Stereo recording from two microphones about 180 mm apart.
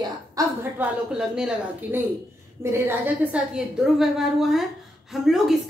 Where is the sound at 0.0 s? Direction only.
20° right (ahead or behind).